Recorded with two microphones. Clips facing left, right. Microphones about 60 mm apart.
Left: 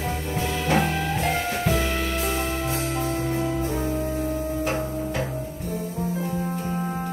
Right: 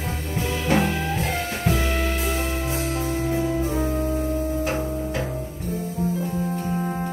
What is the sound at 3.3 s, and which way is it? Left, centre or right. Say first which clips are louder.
Music: right 2 dB; centre.